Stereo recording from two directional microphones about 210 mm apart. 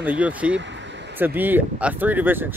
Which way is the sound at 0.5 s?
60° right (ahead or behind).